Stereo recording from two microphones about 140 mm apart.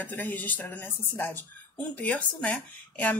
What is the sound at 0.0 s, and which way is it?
A woman's voice, 15° left (ahead or behind).